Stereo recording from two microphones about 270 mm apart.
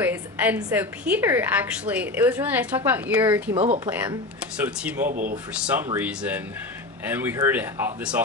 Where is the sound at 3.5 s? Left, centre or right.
Right.